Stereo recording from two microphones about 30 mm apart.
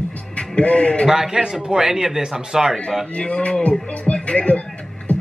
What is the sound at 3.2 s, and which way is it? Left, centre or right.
Speech, left.